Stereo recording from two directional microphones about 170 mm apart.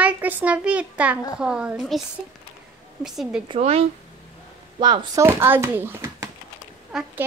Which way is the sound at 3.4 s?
35° right (ahead or behind).